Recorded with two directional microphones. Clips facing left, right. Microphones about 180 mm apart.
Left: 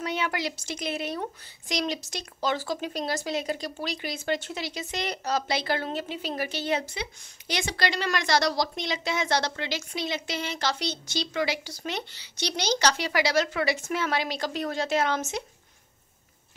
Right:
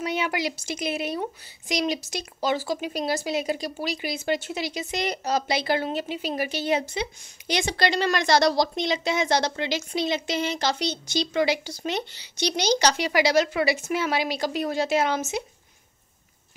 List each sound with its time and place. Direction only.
0.0 s speech: 10° right (ahead or behind)